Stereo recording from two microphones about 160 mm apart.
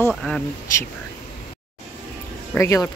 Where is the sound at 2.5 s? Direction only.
20° left (ahead or behind).